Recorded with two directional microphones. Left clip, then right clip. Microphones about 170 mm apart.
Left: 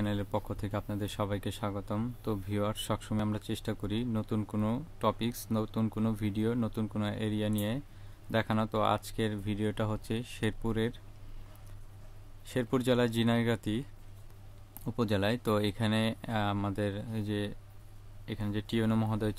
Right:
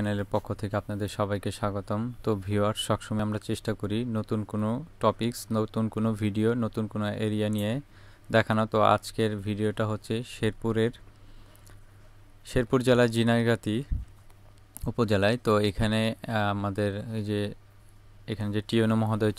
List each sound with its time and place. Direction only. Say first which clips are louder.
0.0 s speech: right 5 dB; 30° right (ahead or behind)
12.4 s speech: right 6 dB; 25° right (ahead or behind)